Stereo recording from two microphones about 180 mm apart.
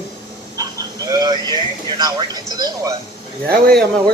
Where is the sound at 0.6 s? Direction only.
20° right (ahead or behind).